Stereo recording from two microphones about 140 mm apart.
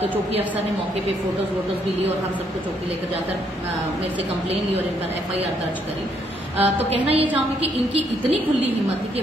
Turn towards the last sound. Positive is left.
turn(degrees=-45)  # may be behind; listen again after turning